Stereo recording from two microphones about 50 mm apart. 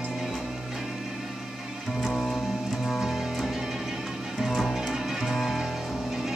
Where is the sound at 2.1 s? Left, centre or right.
Centre.